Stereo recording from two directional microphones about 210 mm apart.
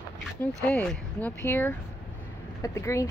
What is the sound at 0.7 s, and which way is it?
Speech, 5° left (ahead or behind).